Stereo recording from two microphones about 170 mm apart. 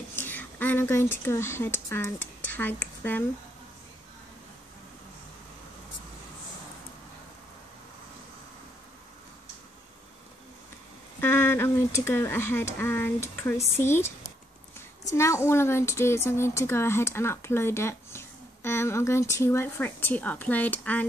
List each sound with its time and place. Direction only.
0.1 s a woman's voice: 10° left (ahead or behind)
11.1 s speech: 15° left (ahead or behind)